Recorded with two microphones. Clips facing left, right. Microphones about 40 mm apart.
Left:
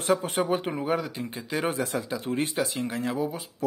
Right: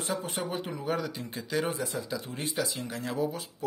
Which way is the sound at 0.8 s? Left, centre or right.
Centre.